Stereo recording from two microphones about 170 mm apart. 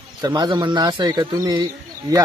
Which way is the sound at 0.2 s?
25° right (ahead or behind).